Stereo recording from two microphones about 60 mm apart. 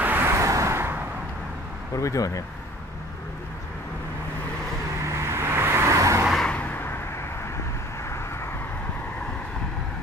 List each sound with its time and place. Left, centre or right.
0.0 s vehicle: right
0.3 s vehicle: right
2.0 s speech: left
5.0 s vehicle: right
5.9 s vehicle: right
6.6 s vehicle: left